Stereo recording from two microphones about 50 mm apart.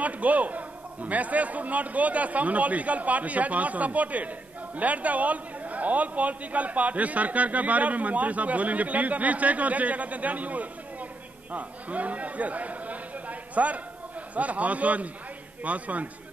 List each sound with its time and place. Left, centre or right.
0.0 s a man's voice: right